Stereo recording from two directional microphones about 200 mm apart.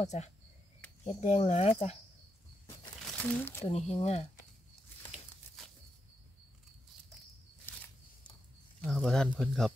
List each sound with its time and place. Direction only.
0.0 s speech: 35° left (ahead or behind)
3.2 s speech: 10° left (ahead or behind)
3.6 s speech: 30° left (ahead or behind)
8.8 s speech: centre (ahead or behind)